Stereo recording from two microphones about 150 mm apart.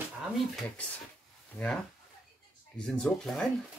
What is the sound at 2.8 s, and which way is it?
Speech, 5° left (ahead or behind).